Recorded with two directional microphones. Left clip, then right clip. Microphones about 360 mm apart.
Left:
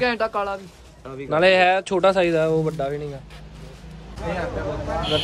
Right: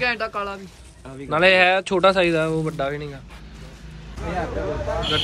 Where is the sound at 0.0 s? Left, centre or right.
Left.